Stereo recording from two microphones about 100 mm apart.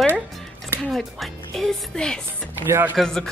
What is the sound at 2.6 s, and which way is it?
Speech, 25° right (ahead or behind).